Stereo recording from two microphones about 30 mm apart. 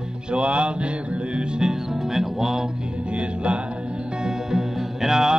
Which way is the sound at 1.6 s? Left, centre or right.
Centre.